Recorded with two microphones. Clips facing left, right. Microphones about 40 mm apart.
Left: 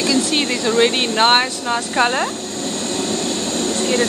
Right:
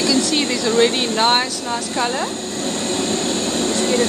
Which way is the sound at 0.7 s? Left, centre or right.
Centre.